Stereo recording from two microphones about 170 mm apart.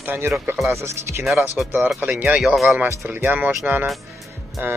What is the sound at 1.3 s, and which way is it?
Speech, centre (ahead or behind).